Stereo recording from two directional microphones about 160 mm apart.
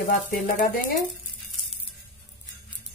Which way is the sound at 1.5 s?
Centre (ahead or behind).